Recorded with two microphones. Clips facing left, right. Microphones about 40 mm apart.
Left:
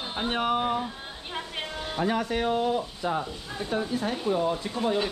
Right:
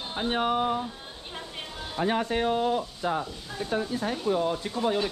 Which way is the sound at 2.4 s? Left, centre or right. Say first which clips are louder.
Even; left.